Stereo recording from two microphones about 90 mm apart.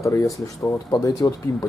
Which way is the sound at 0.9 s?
45° left (ahead or behind).